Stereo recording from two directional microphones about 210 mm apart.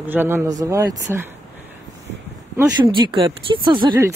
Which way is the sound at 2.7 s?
20° right (ahead or behind).